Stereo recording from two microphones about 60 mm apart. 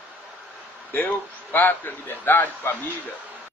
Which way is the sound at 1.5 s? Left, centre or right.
Left.